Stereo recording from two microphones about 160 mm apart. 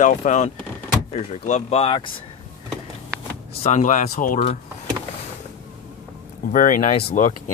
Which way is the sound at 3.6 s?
50° left (ahead or behind).